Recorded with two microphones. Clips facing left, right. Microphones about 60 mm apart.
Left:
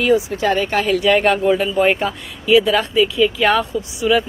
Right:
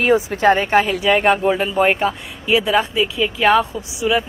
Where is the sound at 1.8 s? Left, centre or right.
Right.